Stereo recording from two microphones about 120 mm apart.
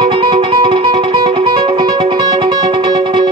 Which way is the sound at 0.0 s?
40° right (ahead or behind).